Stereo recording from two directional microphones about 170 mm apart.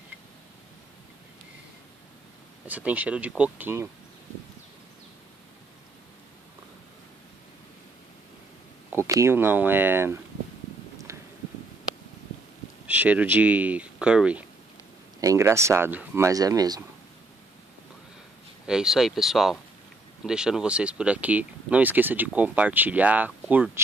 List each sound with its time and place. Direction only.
2.6 s speech: 10° right (ahead or behind)
8.9 s speech: 15° right (ahead or behind)
11.1 s a sound: 20° right (ahead or behind)
12.8 s speech: 10° right (ahead or behind)
15.1 s speech: 15° right (ahead or behind)
18.7 s speech: 5° right (ahead or behind)